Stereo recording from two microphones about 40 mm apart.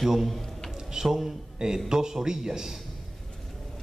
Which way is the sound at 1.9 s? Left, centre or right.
Centre.